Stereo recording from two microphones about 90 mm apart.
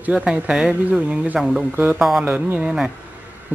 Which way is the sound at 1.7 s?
15° right (ahead or behind).